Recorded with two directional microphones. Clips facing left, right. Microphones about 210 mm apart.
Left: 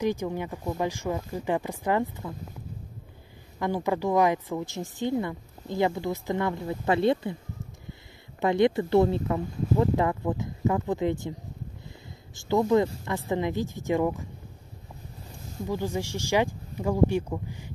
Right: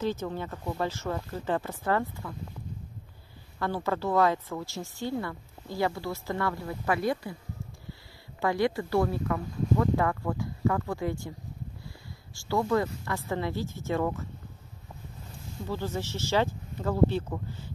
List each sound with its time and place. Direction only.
0.0 s a woman's voice: 15° left (ahead or behind)
3.5 s a woman's voice: 15° left (ahead or behind)
8.4 s speech: 20° left (ahead or behind)
12.4 s a woman's voice: 20° left (ahead or behind)
15.6 s a woman's voice: 15° left (ahead or behind)